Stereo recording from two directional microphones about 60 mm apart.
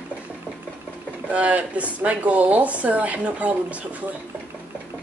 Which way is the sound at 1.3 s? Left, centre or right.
Right.